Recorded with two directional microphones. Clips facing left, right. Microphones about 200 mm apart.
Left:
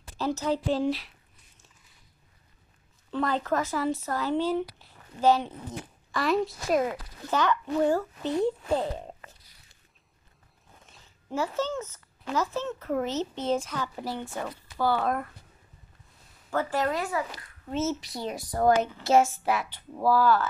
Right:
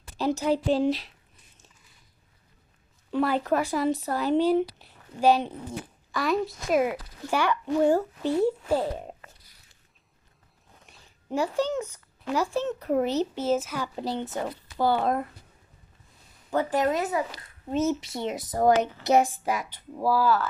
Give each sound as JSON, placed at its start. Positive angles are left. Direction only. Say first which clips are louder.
{"t": 0.2, "sound": "speech", "louder": "right 3 dB", "side_deg": -15}
{"t": 3.1, "sound": "speech", "louder": "right 3 dB", "side_deg": -10}
{"t": 6.1, "sound": "a woman's voice", "louder": "even", "side_deg": 0}
{"t": 6.8, "sound": "speech", "louder": "right 3 dB", "side_deg": -10}
{"t": 11.2, "sound": "speech", "louder": "right 3 dB", "side_deg": -15}
{"t": 13.9, "sound": "speech", "louder": "right 4 dB", "side_deg": -20}
{"t": 16.4, "sound": "speech", "louder": "right 3 dB", "side_deg": -20}